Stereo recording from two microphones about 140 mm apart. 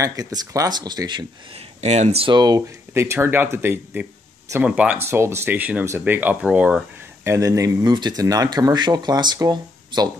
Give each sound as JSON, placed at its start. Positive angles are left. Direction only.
{"t": 0.0, "sound": "speech", "side_deg": -25}
{"t": 1.8, "sound": "speech", "side_deg": -55}
{"t": 2.2, "sound": "speech", "side_deg": -30}
{"t": 2.9, "sound": "speech", "side_deg": -15}
{"t": 7.2, "sound": "speech", "side_deg": -20}